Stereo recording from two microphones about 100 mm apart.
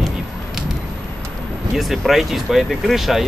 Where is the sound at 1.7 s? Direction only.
Centre (ahead or behind).